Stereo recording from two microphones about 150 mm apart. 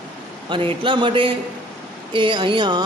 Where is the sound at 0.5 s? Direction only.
35° right (ahead or behind).